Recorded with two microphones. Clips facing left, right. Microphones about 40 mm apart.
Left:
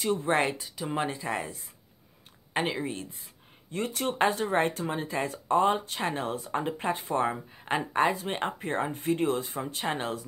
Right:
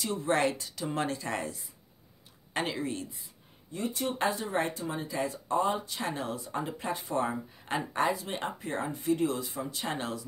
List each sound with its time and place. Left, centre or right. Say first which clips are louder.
0.0 s speech: left 3 dB; left
0.4 s speech: left 1 dB; centre
2.5 s speech: left 2 dB; left
3.7 s speech: left 3 dB; left
8.1 s speech: left 3 dB; left